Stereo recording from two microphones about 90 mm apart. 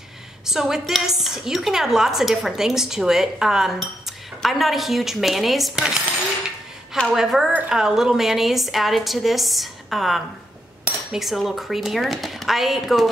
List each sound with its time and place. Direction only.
0.5 s a woman's voice: 5° right (ahead or behind)
7.2 s a woman's voice: 5° right (ahead or behind)